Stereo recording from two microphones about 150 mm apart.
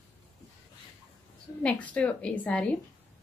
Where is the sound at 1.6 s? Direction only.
10° left (ahead or behind).